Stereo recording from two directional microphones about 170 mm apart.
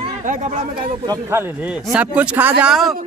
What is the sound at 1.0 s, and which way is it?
Speech, 20° right (ahead or behind).